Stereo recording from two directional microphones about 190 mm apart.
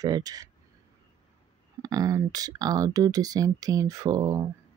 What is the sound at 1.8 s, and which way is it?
Speech, 20° right (ahead or behind).